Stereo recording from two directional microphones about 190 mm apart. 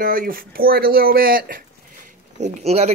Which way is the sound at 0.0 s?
50° right (ahead or behind).